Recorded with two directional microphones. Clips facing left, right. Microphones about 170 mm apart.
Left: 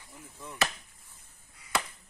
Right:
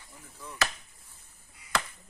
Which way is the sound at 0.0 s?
20° left (ahead or behind).